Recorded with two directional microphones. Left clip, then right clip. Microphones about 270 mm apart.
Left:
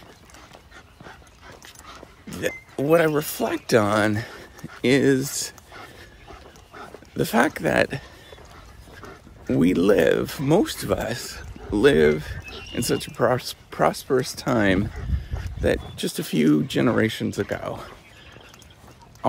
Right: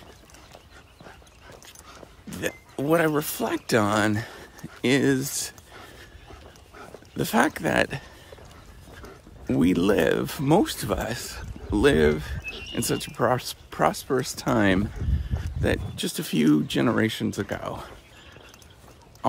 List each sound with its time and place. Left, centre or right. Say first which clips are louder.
2.3 s speech: left 3 dB; centre
4.6 s a sound: left 3 dB; left
4.8 s speech: left 3 dB; centre
7.2 s speech: left 2 dB; centre
9.5 s speech: left 3 dB; centre